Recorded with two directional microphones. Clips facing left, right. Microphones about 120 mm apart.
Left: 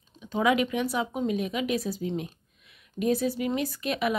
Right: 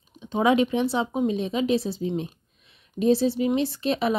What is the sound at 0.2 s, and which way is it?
A woman's voice, 25° right (ahead or behind).